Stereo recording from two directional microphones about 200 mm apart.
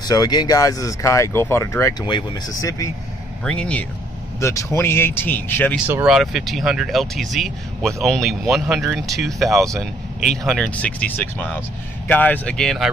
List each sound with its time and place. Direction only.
0.0 s speech: 20° left (ahead or behind)
3.4 s speech: 5° left (ahead or behind)
5.9 s speech: 5° right (ahead or behind)